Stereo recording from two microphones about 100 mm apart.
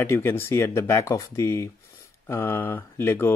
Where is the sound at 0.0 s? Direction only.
20° left (ahead or behind).